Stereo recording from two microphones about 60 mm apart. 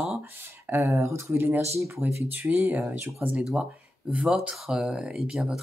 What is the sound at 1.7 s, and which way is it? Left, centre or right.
Speech, right.